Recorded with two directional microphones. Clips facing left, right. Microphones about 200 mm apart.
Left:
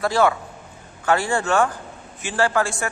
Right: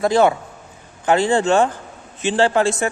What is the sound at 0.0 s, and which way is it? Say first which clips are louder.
Speech: right 4 dB; 20° right (ahead or behind).